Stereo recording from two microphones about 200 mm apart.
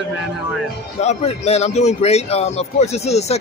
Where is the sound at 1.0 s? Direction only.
35° left (ahead or behind).